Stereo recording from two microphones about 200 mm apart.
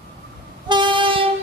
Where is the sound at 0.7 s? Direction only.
25° right (ahead or behind).